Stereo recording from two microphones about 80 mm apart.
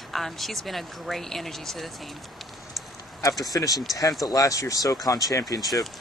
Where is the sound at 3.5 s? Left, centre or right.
Left.